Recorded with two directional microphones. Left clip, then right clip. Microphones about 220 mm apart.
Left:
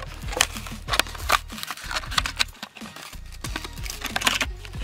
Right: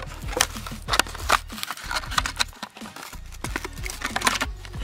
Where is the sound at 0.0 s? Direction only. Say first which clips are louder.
Even; centre (ahead or behind).